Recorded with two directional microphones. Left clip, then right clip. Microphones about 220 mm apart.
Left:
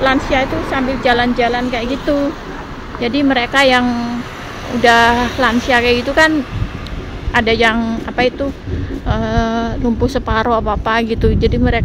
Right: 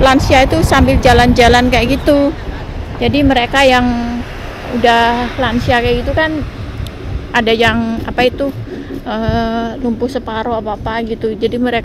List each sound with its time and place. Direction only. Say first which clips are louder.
0.0 s speech: right 5 dB; 20° right (ahead or behind)
3.0 s a woman's voice: right 3 dB; 10° right (ahead or behind)
7.3 s a woman's voice: right 1 dB; 5° right (ahead or behind)